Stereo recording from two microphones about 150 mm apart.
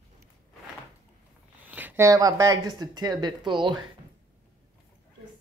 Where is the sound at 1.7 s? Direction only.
10° right (ahead or behind); by 3.8 s 30° right (ahead or behind).